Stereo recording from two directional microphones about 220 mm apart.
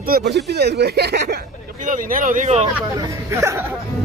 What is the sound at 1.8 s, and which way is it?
Speech, 35° right (ahead or behind).